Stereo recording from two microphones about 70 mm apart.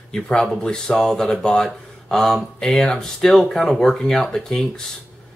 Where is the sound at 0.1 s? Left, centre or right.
Centre.